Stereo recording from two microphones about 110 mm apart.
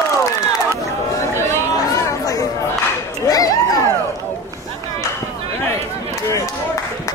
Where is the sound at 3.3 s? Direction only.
35° left (ahead or behind).